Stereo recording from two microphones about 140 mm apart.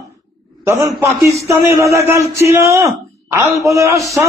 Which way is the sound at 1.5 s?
20° right (ahead or behind).